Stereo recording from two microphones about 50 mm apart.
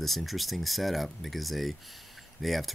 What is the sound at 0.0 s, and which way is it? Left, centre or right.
Speech, centre.